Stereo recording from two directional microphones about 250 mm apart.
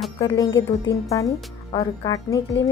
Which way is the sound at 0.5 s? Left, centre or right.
Left.